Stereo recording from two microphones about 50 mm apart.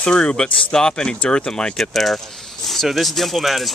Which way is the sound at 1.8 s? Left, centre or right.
Centre.